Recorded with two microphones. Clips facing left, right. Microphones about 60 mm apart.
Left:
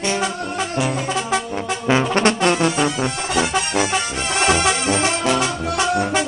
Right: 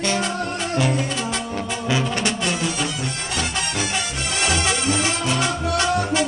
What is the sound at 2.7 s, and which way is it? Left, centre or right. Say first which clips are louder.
Music: left 6 dB; left.